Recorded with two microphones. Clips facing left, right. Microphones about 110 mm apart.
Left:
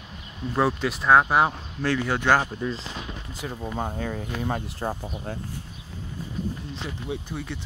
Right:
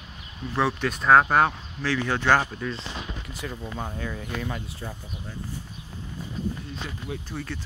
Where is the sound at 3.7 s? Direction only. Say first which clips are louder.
Left 4 dB; 40° left (ahead or behind).